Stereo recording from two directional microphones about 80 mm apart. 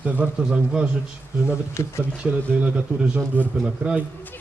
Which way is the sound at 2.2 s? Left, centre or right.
Centre.